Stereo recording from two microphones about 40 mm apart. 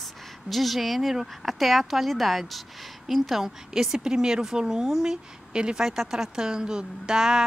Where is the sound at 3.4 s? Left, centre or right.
Centre.